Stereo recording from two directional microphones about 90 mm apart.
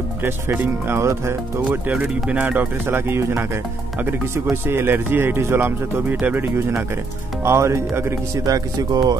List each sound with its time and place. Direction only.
0.2 s speech: 25° right (ahead or behind)
1.7 s speech: 15° right (ahead or behind); by 8.1 s 30° right (ahead or behind)
8.5 s speech: 45° right (ahead or behind)